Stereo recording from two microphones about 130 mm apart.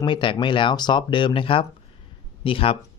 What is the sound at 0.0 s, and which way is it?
Speech, 40° left (ahead or behind).